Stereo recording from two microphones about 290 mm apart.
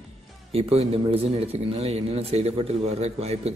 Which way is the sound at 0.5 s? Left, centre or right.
Right.